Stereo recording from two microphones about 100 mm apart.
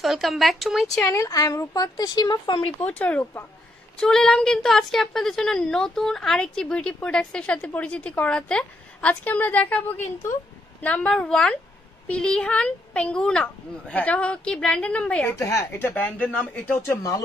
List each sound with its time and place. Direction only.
0.0 s speech: centre (ahead or behind)
1.0 s a woman's voice: 30° left (ahead or behind)
2.8 s a woman's voice: 15° left (ahead or behind)
15.3 s a woman's voice: 30° left (ahead or behind)
15.9 s a woman's voice: 15° left (ahead or behind)